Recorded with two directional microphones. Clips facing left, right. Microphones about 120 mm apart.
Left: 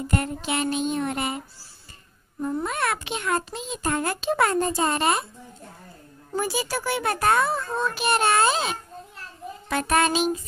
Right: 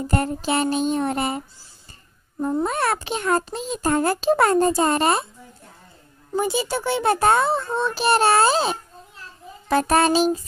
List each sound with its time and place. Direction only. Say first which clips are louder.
0.1 s a child's voice: right 5 dB; 35° right (ahead or behind)
2.4 s a child's voice: right 4 dB; 35° right (ahead or behind)
6.3 s a child's voice: right 4 dB; 25° right (ahead or behind)